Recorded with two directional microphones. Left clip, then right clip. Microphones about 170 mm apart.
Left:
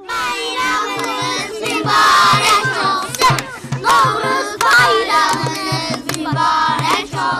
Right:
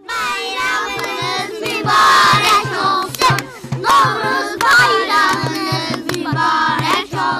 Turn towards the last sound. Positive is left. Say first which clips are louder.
# even
turn(degrees=20)  # may be behind; listen again after turning